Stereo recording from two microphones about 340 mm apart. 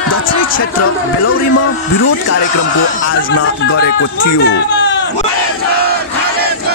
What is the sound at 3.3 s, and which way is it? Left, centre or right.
Speech, left.